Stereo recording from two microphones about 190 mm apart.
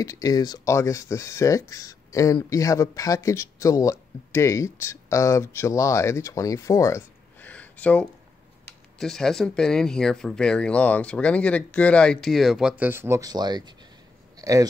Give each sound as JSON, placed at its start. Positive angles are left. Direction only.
{"t": 0.0, "sound": "speech", "side_deg": 20}